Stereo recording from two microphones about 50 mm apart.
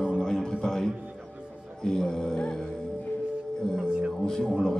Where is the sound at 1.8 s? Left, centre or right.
Centre.